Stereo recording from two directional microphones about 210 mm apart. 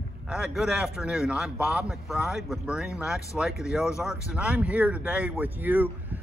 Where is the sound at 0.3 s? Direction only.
5° right (ahead or behind).